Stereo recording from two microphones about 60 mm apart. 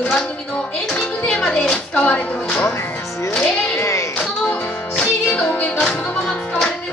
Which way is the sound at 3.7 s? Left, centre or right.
Left.